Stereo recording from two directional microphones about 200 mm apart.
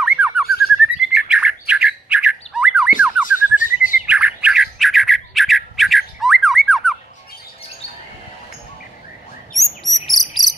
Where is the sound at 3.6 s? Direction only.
40° left (ahead or behind).